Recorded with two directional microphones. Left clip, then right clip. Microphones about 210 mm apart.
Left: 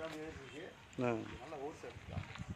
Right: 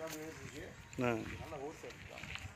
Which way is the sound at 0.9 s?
5° right (ahead or behind).